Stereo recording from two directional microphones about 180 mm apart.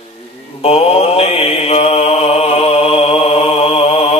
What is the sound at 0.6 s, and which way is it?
Mantra, 35° left (ahead or behind).